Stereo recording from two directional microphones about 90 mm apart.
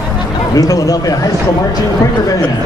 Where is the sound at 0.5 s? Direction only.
40° left (ahead or behind).